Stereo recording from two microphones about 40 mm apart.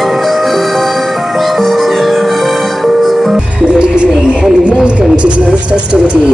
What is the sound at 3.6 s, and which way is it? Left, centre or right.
Speech, right.